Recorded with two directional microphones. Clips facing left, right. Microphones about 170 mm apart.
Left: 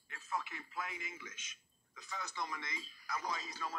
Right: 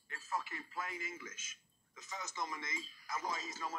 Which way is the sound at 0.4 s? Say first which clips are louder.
Even; 35° right (ahead or behind).